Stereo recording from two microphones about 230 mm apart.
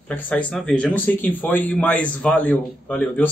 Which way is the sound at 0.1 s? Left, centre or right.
Centre.